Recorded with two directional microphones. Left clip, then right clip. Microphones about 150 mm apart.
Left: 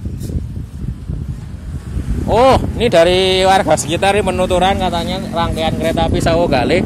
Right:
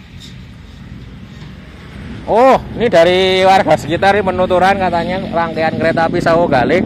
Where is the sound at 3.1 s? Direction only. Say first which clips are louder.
Right 1 dB; 25° left (ahead or behind).